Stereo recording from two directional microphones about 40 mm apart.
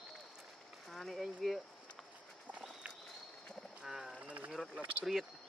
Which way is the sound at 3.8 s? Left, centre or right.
Centre.